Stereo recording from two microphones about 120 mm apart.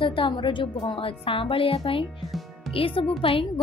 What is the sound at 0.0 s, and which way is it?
Speech, 45° left (ahead or behind).